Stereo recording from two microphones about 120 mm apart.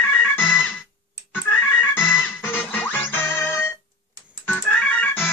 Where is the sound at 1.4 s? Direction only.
20° left (ahead or behind).